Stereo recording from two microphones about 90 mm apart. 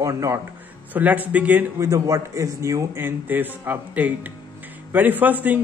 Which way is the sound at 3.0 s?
20° right (ahead or behind).